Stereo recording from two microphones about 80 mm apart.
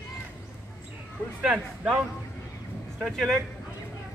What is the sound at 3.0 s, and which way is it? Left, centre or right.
Speech, centre.